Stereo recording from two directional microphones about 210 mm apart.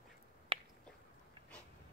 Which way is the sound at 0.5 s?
30° right (ahead or behind).